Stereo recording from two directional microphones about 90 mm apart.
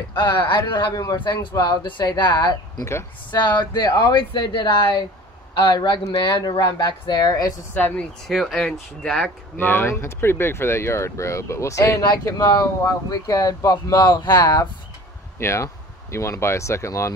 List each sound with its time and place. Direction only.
0.1 s speech: 60° left (ahead or behind)
2.8 s speech: 30° left (ahead or behind)
3.3 s speech: 50° left (ahead or behind)
7.7 s speech: 20° left (ahead or behind)
8.3 s speech: centre (ahead or behind)
9.6 s speech: 25° left (ahead or behind)
12.4 s speech: 45° left (ahead or behind)
15.3 s speech: 30° left (ahead or behind)